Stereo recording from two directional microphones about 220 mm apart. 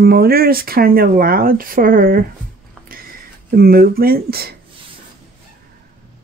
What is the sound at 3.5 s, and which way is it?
Speech, 40° right (ahead or behind).